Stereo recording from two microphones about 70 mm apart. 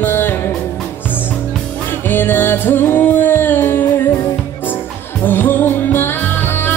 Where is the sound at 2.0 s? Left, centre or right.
Left.